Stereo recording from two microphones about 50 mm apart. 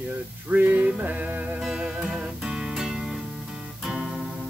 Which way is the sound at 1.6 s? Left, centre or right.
Centre.